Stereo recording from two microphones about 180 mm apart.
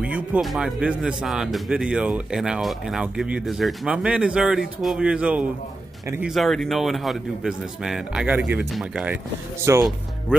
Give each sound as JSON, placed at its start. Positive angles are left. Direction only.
{"t": 0.0, "sound": "speech", "side_deg": -5}
{"t": 9.7, "sound": "speech", "side_deg": -15}